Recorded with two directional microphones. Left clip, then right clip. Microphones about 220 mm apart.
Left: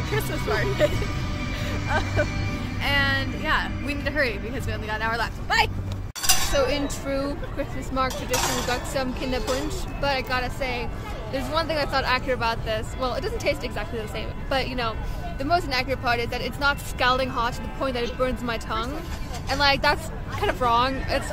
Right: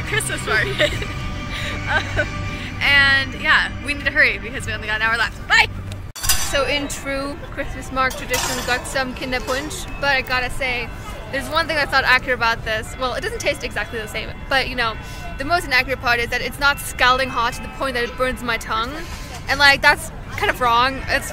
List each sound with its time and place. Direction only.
0.1 s speech: 20° left (ahead or behind)
6.5 s speech: 5° right (ahead or behind)